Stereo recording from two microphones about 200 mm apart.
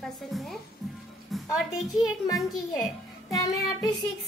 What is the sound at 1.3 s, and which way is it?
Music, centre (ahead or behind).